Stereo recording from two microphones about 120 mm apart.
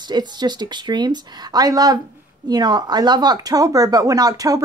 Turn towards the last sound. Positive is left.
turn(degrees=-30)  # may be behind; listen again after turning